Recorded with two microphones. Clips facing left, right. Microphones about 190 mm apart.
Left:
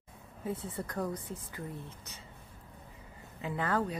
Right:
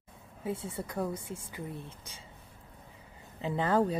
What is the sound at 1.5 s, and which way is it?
Speech, 20° right (ahead or behind).